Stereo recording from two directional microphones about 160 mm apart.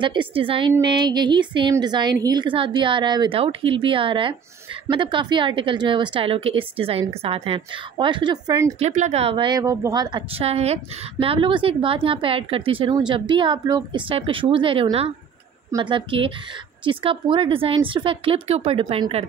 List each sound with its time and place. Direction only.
0.0 s a woman's voice: 30° right (ahead or behind)
0.7 s music: 25° right (ahead or behind)
1.7 s a woman's voice: 25° right (ahead or behind)
8.7 s a woman's voice: 45° right (ahead or behind)